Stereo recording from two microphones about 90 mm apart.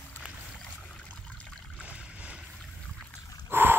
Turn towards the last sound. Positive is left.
turn(degrees=-25)  # may be behind; listen again after turning